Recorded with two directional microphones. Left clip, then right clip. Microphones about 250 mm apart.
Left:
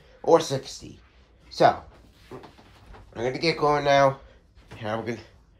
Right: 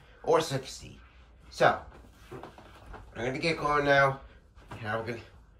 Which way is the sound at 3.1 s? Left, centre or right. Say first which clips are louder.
Left 5 dB; centre.